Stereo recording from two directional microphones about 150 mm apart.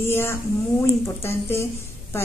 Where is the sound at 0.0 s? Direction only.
15° left (ahead or behind).